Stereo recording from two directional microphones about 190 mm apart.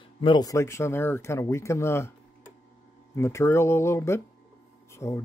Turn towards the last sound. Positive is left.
turn(degrees=15)  # may be behind; listen again after turning